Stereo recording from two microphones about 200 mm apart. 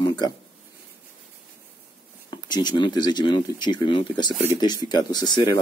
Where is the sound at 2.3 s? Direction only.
20° left (ahead or behind).